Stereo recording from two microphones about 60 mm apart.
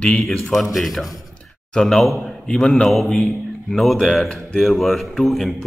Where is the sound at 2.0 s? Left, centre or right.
Centre.